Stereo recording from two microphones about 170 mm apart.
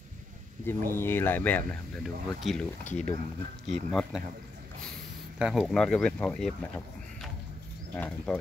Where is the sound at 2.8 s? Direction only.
40° left (ahead or behind).